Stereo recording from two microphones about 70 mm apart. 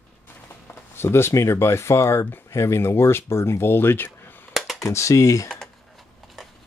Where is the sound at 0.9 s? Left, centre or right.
Left.